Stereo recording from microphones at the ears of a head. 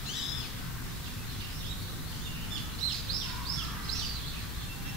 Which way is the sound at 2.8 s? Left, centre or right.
Right.